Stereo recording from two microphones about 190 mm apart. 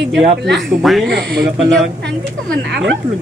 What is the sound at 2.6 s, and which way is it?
Speech, 60° right (ahead or behind).